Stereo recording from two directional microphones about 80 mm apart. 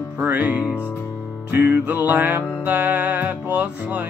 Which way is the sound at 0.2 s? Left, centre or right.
Right.